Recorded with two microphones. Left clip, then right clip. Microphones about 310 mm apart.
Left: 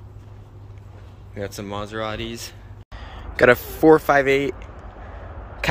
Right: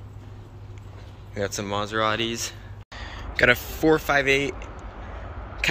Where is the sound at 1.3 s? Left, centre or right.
Centre.